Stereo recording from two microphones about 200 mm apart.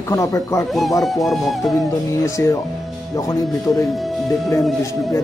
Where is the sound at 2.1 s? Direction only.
15° left (ahead or behind).